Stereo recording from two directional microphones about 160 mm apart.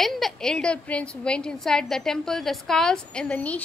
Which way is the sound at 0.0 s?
Centre (ahead or behind).